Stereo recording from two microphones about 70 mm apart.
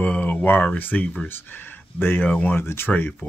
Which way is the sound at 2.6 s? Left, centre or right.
Left.